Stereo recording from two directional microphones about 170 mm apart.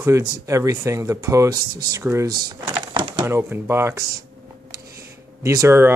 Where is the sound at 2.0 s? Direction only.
15° right (ahead or behind).